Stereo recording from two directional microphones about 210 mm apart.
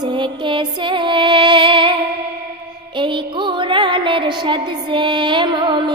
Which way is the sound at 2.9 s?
20° right (ahead or behind).